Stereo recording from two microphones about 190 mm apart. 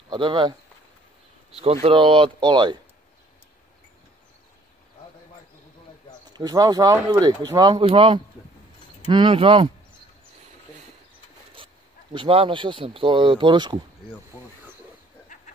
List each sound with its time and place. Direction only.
0.1 s speech: 25° right (ahead or behind)
1.6 s speech: 30° right (ahead or behind)
6.2 s speech: 20° right (ahead or behind)
11.5 s speech: 25° right (ahead or behind)